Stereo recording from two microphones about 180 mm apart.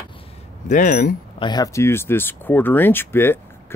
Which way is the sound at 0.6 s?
50° left (ahead or behind).